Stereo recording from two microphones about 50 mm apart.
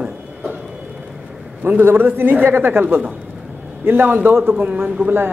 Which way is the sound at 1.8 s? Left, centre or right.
Right.